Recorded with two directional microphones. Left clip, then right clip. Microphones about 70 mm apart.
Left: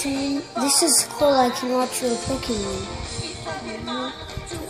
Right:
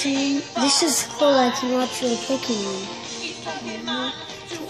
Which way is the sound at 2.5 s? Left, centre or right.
Right.